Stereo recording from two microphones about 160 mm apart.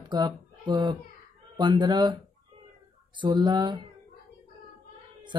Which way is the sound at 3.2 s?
25° right (ahead or behind).